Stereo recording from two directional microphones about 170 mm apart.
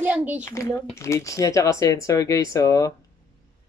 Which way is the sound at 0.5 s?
20° left (ahead or behind).